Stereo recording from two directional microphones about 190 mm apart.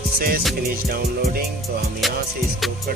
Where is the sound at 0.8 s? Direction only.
50° right (ahead or behind).